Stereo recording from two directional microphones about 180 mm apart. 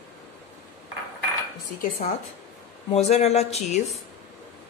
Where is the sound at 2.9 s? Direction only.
35° left (ahead or behind).